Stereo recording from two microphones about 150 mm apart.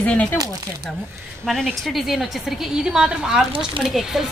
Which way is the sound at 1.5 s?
5° left (ahead or behind).